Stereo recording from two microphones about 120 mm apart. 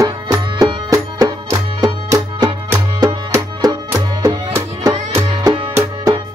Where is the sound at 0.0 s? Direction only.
30° right (ahead or behind).